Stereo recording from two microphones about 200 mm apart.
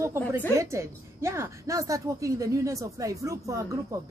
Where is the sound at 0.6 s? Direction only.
15° right (ahead or behind).